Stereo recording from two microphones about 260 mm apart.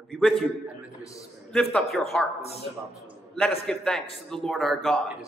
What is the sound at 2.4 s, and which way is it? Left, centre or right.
Speech, left.